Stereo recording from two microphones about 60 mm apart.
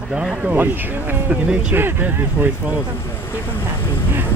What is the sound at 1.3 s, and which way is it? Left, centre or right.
Speech, centre.